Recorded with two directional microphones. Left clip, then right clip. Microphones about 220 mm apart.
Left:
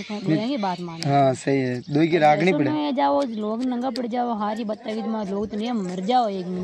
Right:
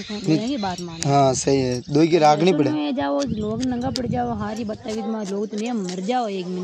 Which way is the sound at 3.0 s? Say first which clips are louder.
Left 2 dB; 10° left (ahead or behind).